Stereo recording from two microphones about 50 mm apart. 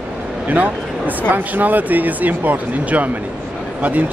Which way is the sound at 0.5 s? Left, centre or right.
Right.